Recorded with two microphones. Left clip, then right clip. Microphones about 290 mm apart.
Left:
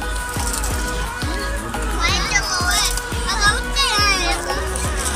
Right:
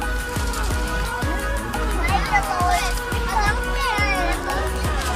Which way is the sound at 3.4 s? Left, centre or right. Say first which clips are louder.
Left 5 dB; centre.